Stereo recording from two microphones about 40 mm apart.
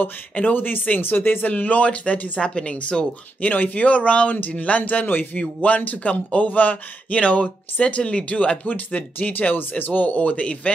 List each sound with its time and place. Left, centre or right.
0.4 s speech: left
1.5 s speech: left
3.3 s speech: left
4.3 s speech: left
5.4 s speech: left
8.0 s speech: left
8.3 s speech: left
9.5 s speech: left